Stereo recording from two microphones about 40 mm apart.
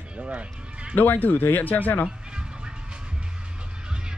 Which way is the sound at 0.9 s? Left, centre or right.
Left.